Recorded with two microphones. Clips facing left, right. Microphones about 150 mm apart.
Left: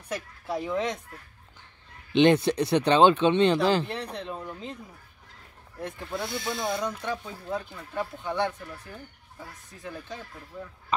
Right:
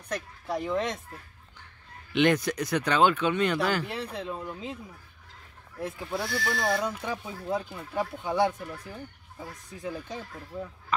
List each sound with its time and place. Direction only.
0.1 s speech: centre (ahead or behind)
2.1 s speech: 25° left (ahead or behind)
3.8 s speech: 5° right (ahead or behind)
5.8 s speech: 5° right (ahead or behind)
6.2 s speech: 20° left (ahead or behind)
6.8 s speech: 10° right (ahead or behind)
10.9 s speech: 20° left (ahead or behind)